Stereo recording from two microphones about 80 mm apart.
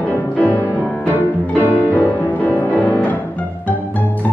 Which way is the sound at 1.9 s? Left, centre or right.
Left.